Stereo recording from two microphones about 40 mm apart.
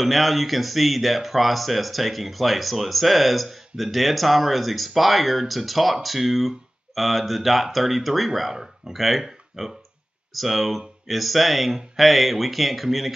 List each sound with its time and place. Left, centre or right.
0.0 s speech: centre